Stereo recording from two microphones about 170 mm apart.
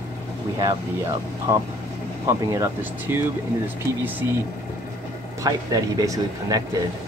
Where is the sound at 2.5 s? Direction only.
15° right (ahead or behind).